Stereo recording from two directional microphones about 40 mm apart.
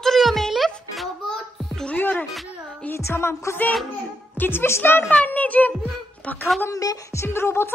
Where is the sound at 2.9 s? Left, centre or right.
Left.